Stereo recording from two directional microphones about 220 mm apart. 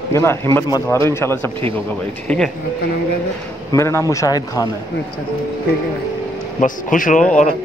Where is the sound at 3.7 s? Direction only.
15° left (ahead or behind).